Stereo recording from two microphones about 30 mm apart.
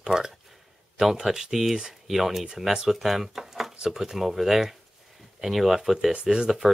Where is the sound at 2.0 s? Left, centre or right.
Centre.